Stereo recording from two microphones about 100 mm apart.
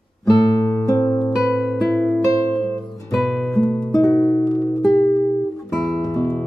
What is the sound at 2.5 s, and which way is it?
Music, 30° left (ahead or behind).